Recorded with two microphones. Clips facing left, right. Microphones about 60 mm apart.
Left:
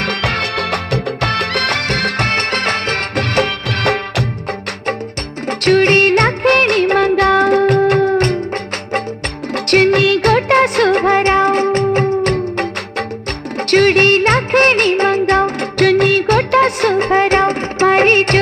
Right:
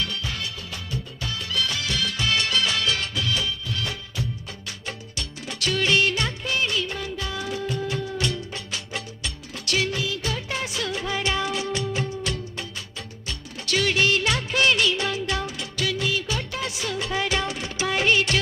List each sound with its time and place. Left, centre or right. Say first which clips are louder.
0.0 s music: left 12 dB; left
5.5 s music of bollywood: left 12 dB; left
9.7 s music: left 15 dB; left
13.7 s music: left 12 dB; left